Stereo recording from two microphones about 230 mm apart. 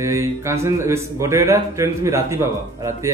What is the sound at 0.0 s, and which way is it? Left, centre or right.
A man's voice, centre.